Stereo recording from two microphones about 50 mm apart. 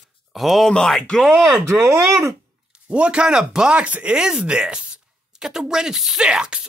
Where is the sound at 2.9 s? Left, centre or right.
Right.